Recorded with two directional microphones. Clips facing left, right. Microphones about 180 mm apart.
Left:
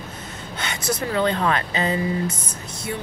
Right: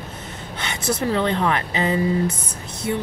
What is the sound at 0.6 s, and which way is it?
Speech, 25° right (ahead or behind).